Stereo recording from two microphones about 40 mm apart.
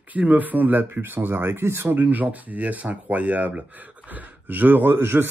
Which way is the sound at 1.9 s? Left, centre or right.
Right.